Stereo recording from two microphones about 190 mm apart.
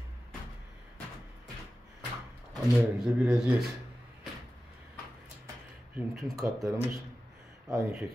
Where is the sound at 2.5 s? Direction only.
5° right (ahead or behind).